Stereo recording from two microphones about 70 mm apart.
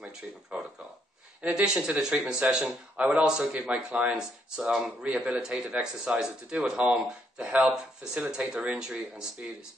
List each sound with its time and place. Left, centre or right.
0.5 s speech: centre